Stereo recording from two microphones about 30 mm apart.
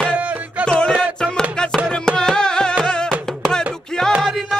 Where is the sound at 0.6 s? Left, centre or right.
Left.